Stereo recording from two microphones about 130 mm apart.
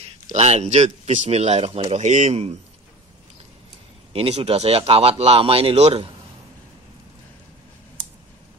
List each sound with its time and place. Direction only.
0.0 s speech: 60° right (ahead or behind)
2.0 s speech: 70° right (ahead or behind)
4.1 s speech: 50° right (ahead or behind)